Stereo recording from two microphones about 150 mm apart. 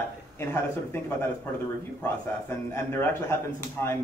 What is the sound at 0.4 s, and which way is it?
A man's voice, 15° left (ahead or behind).